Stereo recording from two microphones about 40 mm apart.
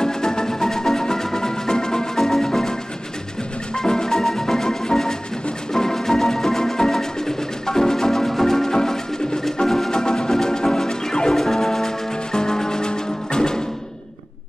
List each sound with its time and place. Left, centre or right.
0.0 s music: centre
3.7 s music: centre